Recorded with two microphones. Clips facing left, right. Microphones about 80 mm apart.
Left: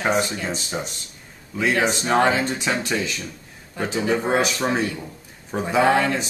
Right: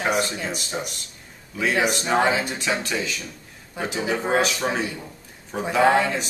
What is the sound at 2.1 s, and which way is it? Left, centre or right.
Speech, centre.